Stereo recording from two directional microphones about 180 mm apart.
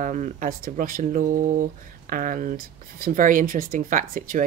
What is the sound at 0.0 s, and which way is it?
Speech, 45° right (ahead or behind).